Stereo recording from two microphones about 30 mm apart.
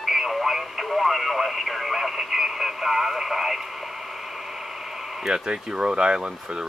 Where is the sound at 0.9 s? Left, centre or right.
Centre.